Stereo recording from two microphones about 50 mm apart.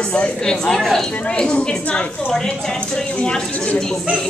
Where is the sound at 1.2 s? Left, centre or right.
Left.